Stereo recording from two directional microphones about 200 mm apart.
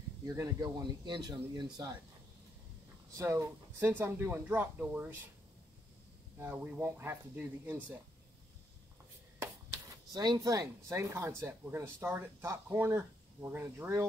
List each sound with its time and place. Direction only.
0.2 s speech: 15° right (ahead or behind)
3.2 s speech: 15° right (ahead or behind)
6.3 s speech: 10° right (ahead or behind)
10.1 s speech: 20° right (ahead or behind)